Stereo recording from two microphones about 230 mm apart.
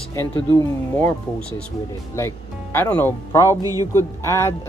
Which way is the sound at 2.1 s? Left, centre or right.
Centre.